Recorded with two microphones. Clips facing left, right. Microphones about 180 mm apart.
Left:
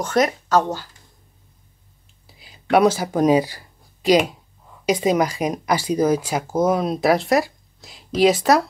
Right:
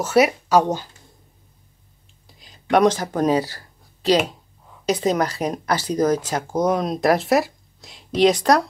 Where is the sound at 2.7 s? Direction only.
10° left (ahead or behind).